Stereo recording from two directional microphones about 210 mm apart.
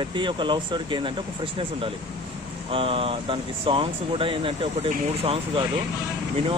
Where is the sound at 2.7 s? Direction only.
25° right (ahead or behind).